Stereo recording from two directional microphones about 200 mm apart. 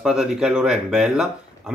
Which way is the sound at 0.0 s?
5° right (ahead or behind).